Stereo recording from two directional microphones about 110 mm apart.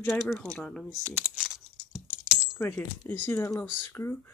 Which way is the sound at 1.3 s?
Centre (ahead or behind).